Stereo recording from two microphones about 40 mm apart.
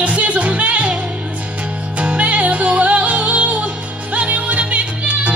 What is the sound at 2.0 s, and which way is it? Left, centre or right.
Music, right.